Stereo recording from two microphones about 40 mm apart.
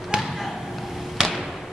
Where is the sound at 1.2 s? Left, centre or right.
Centre.